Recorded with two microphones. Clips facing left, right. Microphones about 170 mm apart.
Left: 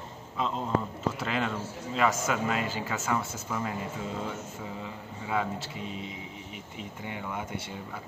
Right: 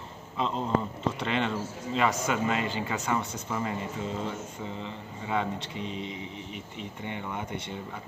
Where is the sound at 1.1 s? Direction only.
Centre (ahead or behind).